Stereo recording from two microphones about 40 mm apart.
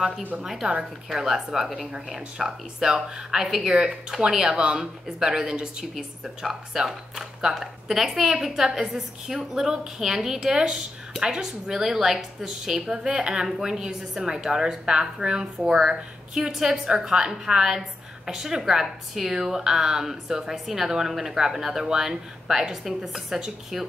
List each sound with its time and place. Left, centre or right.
0.4 s a woman's voice: centre
6.2 s a woman's voice: centre
12.8 s a woman's voice: right